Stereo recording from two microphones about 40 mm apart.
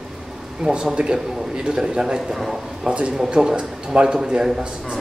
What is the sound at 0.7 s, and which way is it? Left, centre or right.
A man's voice, centre.